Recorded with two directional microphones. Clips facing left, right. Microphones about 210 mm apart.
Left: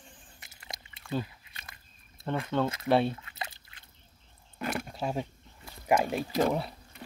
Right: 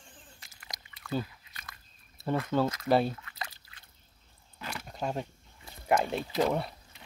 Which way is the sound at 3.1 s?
25° left (ahead or behind).